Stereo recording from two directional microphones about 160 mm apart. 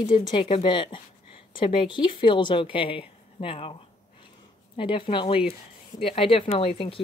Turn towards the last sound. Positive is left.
turn(degrees=35)  # may be behind; listen again after turning